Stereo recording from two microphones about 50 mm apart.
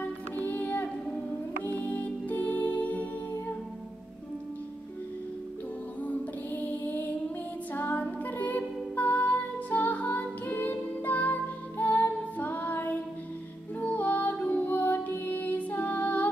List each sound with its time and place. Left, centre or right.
0.0 s music: left
6.0 s music: left